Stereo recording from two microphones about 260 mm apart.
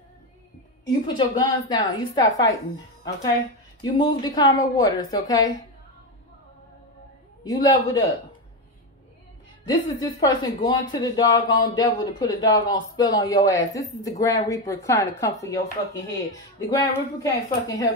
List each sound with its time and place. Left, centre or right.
1.0 s speech: centre
3.8 s speech: centre
7.4 s speech: centre
9.7 s speech: centre